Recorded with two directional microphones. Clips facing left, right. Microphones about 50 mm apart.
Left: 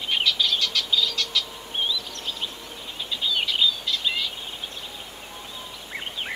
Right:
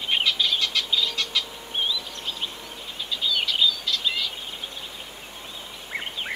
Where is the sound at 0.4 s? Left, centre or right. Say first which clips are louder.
Even; centre.